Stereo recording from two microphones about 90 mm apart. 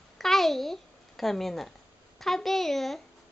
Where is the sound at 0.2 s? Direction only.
5° left (ahead or behind).